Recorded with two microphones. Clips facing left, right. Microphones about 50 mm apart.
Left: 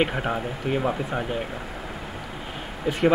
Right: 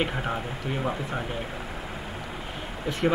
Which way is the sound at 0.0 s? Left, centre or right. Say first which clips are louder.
Left 4 dB; centre.